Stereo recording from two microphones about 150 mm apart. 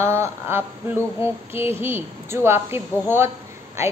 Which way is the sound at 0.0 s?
20° right (ahead or behind).